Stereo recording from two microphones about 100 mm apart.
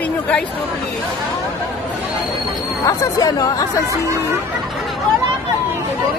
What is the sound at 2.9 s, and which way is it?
Speech, 40° left (ahead or behind).